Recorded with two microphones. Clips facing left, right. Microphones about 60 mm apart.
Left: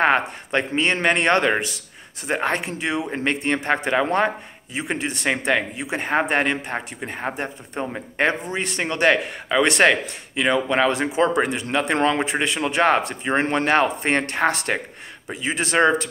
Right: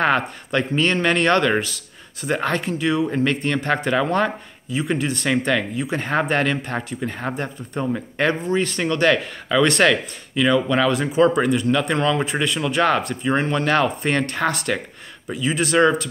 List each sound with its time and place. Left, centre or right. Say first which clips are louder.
0.0 s speech: left 1 dB; left